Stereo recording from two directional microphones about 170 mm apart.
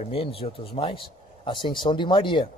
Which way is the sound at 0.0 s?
35° left (ahead or behind).